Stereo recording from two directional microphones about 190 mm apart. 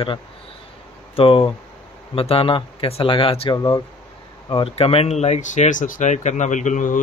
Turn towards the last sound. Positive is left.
turn(degrees=40)  # may be behind; listen again after turning